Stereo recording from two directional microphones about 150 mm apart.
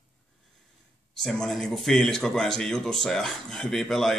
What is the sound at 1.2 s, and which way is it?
Speech, 5° left (ahead or behind).